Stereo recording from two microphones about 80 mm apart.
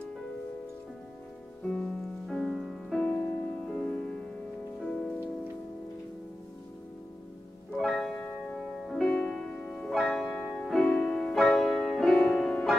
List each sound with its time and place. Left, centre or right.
1.6 s music: centre
2.9 s music: centre
7.7 s music: centre